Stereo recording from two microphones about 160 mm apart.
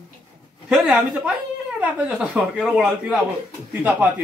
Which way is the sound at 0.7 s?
5° right (ahead or behind).